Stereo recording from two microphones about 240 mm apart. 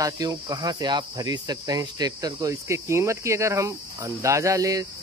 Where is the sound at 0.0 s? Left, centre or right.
Centre.